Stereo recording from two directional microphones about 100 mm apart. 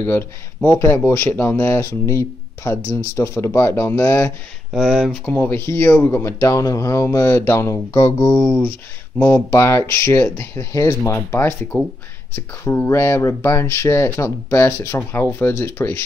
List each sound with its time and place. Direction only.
0.0 s speech: 20° left (ahead or behind)
4.7 s speech: centre (ahead or behind)
5.1 s speech: 15° left (ahead or behind)
6.4 s speech: 35° left (ahead or behind)